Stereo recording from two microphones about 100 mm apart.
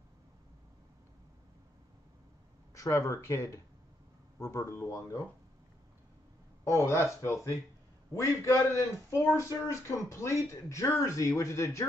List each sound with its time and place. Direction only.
2.7 s speech: 35° left (ahead or behind)
6.6 s a man's voice: 30° left (ahead or behind)